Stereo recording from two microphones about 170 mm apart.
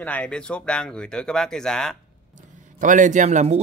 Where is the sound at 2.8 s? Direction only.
50° right (ahead or behind).